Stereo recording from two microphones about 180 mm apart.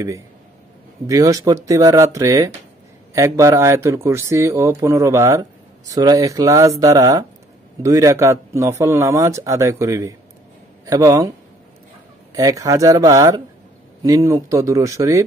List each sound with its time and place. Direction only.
1.0 s speech: 20° right (ahead or behind)
12.4 s speech: 20° right (ahead or behind)